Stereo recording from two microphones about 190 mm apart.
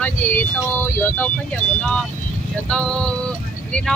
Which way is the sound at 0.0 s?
10° left (ahead or behind).